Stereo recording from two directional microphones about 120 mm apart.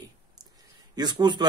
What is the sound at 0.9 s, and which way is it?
Speech, 35° right (ahead or behind).